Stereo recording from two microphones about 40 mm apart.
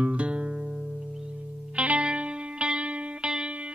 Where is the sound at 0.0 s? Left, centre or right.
Right.